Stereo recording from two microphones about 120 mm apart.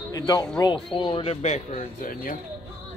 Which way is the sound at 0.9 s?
45° left (ahead or behind).